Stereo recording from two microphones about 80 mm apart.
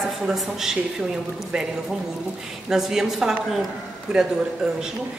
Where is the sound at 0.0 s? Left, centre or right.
Centre.